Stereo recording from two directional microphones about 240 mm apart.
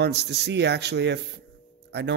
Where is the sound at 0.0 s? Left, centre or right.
Right.